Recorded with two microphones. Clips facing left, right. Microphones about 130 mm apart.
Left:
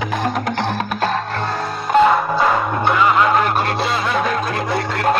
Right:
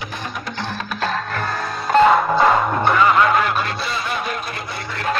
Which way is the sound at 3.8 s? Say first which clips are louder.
Left 5 dB; 90° left.